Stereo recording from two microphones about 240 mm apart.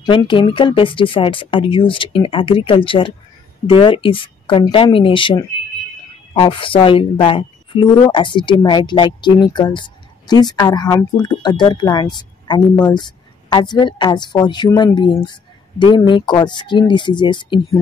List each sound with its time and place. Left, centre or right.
0.0 s a woman's voice: centre